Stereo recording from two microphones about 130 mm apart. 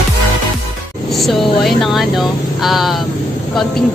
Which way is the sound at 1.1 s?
Centre (ahead or behind).